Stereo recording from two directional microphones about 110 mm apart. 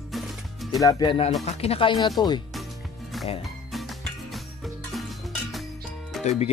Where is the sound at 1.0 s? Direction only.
50° left (ahead or behind).